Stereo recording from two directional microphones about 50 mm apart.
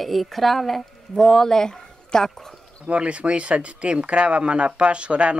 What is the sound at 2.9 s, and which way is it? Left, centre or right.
Speech, right.